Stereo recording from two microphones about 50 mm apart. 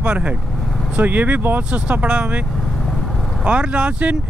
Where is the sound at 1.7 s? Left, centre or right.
Right.